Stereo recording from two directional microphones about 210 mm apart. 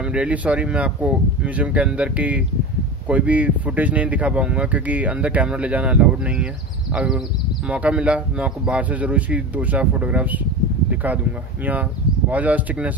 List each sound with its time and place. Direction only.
0.0 s speech: 5° right (ahead or behind)
12.3 s speech: 5° right (ahead or behind)